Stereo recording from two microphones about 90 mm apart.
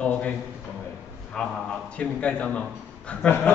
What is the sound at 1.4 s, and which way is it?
A man's voice, 5° left (ahead or behind).